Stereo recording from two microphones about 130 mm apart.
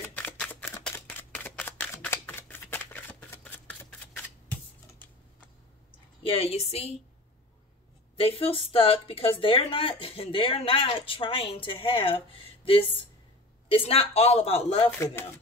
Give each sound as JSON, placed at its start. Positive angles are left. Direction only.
{"t": 0.0, "sound": "shuffling cards", "side_deg": 10}
{"t": 0.9, "sound": "camera", "side_deg": 15}
{"t": 6.2, "sound": "speech", "side_deg": 50}
{"t": 8.2, "sound": "speech", "side_deg": 45}
{"t": 14.9, "sound": "speech", "side_deg": 20}